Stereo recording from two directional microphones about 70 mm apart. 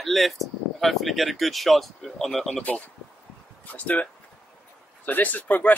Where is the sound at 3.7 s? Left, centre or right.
Centre.